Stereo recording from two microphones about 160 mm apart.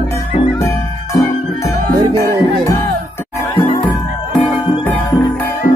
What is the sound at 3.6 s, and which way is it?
Music, 35° left (ahead or behind).